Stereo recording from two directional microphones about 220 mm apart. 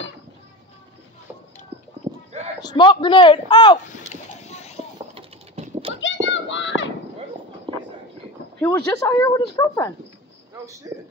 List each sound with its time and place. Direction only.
2.6 s speech: 20° left (ahead or behind)
4.1 s boat: 30° left (ahead or behind)
5.1 s typing: 25° right (ahead or behind)
6.2 s a sound: 55° left (ahead or behind)
7.7 s a sound: 25° right (ahead or behind)
8.5 s speech: 5° left (ahead or behind)
8.8 s a woman's voice: 15° left (ahead or behind)
10.5 s a man's voice: 15° right (ahead or behind)